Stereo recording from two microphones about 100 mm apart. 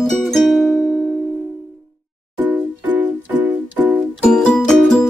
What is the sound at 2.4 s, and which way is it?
Music, 15° right (ahead or behind).